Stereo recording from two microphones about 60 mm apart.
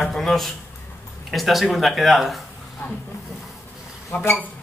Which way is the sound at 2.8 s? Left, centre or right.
Left.